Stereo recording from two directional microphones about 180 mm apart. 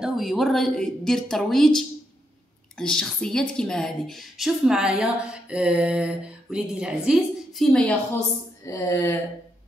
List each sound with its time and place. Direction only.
0.0 s a woman's voice: centre (ahead or behind)
8.6 s speech: 15° left (ahead or behind)